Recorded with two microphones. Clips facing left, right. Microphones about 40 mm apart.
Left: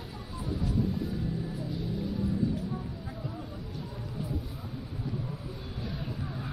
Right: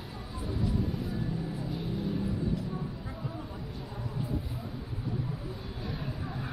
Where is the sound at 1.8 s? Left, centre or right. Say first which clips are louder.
Even; centre.